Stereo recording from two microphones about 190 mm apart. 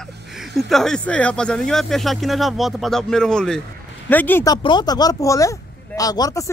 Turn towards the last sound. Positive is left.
turn(degrees=20)  # may be behind; listen again after turning